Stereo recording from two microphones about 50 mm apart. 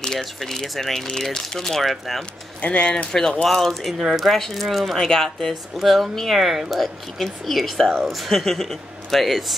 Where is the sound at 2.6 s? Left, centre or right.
Left.